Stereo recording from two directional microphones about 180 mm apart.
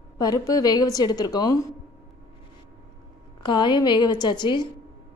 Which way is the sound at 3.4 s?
25° left (ahead or behind).